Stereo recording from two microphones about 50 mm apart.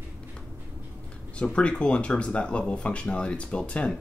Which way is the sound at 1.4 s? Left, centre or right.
Left.